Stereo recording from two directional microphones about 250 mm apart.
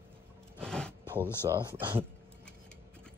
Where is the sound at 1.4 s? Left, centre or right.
Centre.